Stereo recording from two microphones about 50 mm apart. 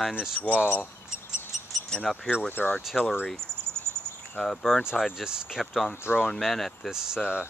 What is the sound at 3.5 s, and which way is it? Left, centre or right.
Cricket, right.